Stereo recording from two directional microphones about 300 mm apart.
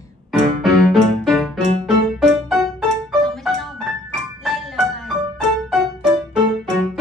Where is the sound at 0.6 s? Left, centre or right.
Centre.